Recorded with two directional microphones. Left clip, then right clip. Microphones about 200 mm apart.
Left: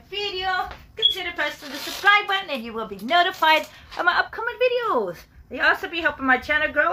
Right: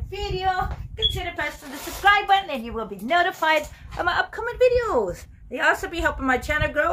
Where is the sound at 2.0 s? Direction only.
10° right (ahead or behind).